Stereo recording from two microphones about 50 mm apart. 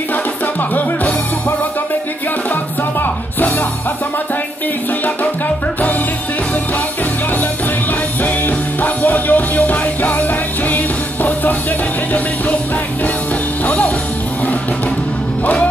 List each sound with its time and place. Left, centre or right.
0.1 s music: left
3.0 s music: left
8.2 s music: left
13.7 s music: left